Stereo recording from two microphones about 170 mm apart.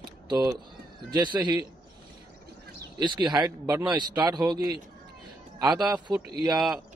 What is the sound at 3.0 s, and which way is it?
A man's voice, 25° right (ahead or behind).